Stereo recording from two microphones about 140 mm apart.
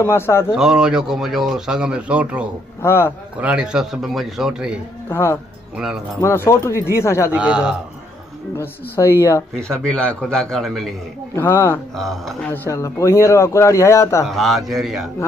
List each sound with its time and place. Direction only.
0.0 s a woman's voice: 20° left (ahead or behind)
0.5 s a man's voice: 5° right (ahead or behind)
2.8 s a woman's voice: 20° left (ahead or behind)
3.3 s a man's voice: 10° right (ahead or behind)
5.1 s a woman's voice: 20° left (ahead or behind)
7.3 s a man's voice: 5° right (ahead or behind)
8.5 s a woman's voice: 20° left (ahead or behind)
9.6 s a man's voice: 5° left (ahead or behind)
11.3 s a woman's voice: 20° left (ahead or behind)
12.0 s a man's voice: centre (ahead or behind)
12.7 s a man's voice: 20° left (ahead or behind)
14.2 s a man's voice: centre (ahead or behind)